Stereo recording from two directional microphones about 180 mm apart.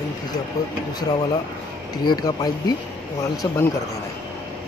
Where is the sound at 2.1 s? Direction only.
25° left (ahead or behind).